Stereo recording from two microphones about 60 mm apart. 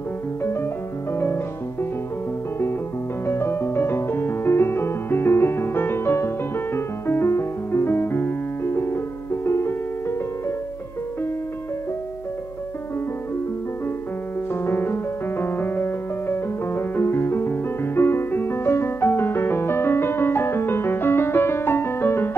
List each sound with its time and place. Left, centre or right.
0.4 s music: left
3.3 s music: left
14.5 s music: left